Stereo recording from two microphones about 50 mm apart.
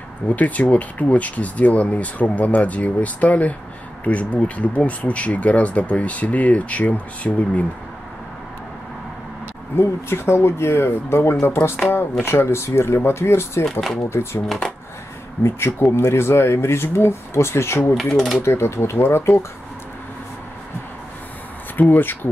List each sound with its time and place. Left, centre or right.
0.4 s speech: left
9.8 s speech: left
13.7 s speech: centre
14.0 s speech: left
15.4 s speech: left
17.9 s speech: centre
18.4 s speech: left
21.7 s speech: left